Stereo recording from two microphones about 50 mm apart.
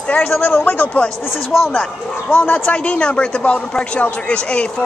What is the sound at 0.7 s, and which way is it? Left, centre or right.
Speech, left.